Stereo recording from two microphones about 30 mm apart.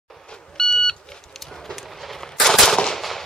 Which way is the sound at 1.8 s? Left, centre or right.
Centre.